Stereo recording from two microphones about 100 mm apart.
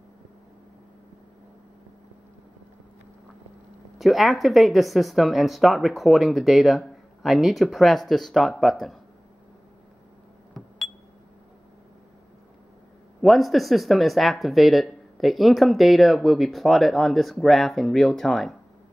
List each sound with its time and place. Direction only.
4.0 s speech: centre (ahead or behind)
10.6 s a sound: centre (ahead or behind)
13.2 s speech: centre (ahead or behind)